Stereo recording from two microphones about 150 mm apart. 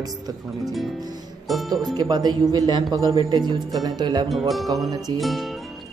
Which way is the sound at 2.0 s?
25° right (ahead or behind).